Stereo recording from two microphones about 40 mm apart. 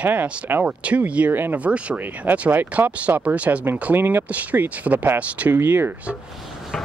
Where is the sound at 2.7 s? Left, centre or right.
Right.